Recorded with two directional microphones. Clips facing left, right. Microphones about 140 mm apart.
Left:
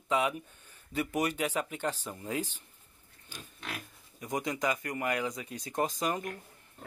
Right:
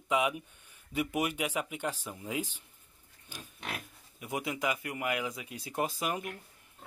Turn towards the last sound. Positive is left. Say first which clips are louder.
# left 2 dB
turn(degrees=-10)  # may be behind; listen again after turning